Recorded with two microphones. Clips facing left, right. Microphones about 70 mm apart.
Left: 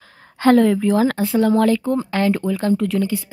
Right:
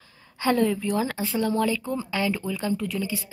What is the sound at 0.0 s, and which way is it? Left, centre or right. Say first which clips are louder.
A woman's voice: left 9 dB; left.